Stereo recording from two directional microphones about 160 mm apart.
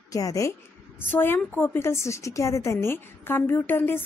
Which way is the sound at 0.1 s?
20° left (ahead or behind).